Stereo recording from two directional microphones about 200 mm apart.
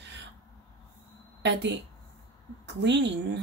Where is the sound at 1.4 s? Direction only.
60° right (ahead or behind).